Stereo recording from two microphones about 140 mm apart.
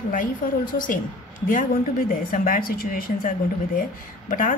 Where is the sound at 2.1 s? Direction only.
80° left.